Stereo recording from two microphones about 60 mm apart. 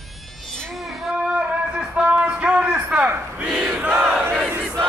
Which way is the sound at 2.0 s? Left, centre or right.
Centre.